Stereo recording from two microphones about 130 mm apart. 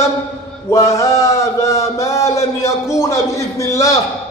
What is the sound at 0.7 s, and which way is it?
Speech, 20° left (ahead or behind).